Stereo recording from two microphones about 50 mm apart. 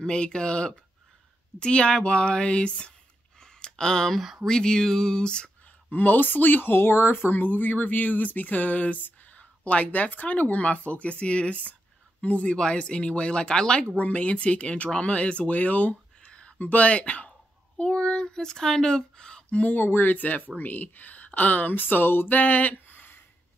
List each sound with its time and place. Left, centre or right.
0.0 s speech: centre
3.3 s a sound: centre
4.5 s speech: centre
5.9 s speech: left
16.3 s a sound: left
16.6 s speech: left
19.6 s speech: left